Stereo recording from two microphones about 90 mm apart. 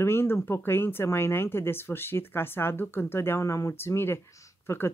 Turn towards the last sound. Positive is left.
turn(degrees=25)  # may be behind; listen again after turning